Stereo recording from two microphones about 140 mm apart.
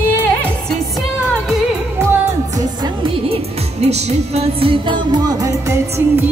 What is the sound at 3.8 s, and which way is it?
Music, 50° right (ahead or behind).